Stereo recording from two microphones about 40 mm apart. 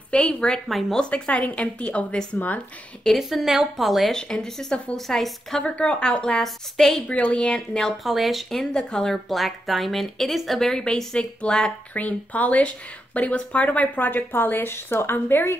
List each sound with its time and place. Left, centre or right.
0.1 s a woman's voice: left
0.7 s a woman's voice: centre
1.1 s a woman's voice: left
2.3 s speech: left
3.2 s a woman's voice: centre
4.1 s a woman's voice: centre
5.6 s a woman's voice: left
6.4 s a woman's voice: centre
7.2 s a woman's voice: left
7.8 s a woman's voice: centre
8.7 s a woman's voice: centre
9.3 s a woman's voice: centre; by 11.7 s left
11.9 s speech: left